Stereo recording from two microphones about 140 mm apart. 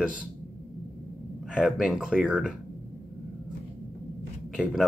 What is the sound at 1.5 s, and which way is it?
Speech, 5° right (ahead or behind).